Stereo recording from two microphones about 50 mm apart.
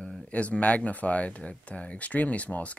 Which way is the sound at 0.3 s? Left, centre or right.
Left.